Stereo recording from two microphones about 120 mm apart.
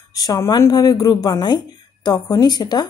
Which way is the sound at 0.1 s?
30° left (ahead or behind).